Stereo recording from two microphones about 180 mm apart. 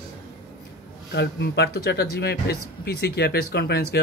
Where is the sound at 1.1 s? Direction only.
70° left (ahead or behind).